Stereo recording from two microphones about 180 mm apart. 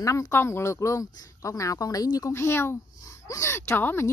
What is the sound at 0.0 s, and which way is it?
A woman's voice, 15° left (ahead or behind).